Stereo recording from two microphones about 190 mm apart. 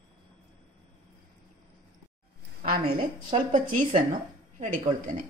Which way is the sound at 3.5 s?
40° right (ahead or behind).